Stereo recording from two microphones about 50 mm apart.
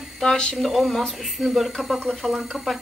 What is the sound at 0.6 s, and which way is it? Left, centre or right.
Speech, centre.